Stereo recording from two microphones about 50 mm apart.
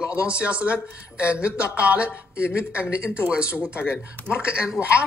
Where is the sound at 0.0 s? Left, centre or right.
Right.